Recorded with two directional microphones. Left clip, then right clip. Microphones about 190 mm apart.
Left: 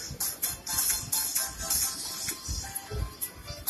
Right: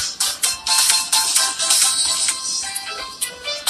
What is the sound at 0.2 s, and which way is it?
Music, 35° right (ahead or behind).